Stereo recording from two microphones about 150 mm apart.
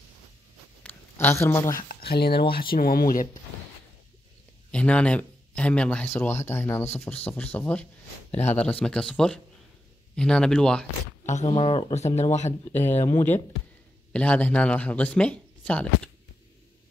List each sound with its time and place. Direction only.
0.8 s speech: 15° left (ahead or behind)
1.8 s speech: 80° left
2.5 s speech: 80° left
4.6 s speech: 5° left (ahead or behind)
11.2 s speech: 50° left (ahead or behind)
12.7 s speech: 15° left (ahead or behind)